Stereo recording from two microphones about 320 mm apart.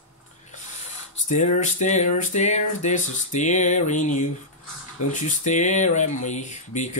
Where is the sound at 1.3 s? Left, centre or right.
Left.